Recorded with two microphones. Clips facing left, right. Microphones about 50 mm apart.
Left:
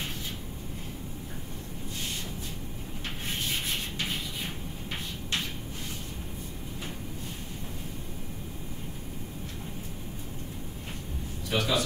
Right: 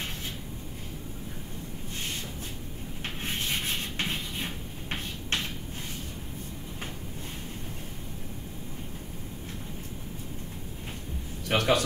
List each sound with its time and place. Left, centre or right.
3.9 s music: right
11.4 s a man's voice: right